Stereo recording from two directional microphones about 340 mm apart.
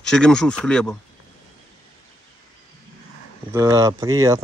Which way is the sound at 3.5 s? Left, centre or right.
Centre.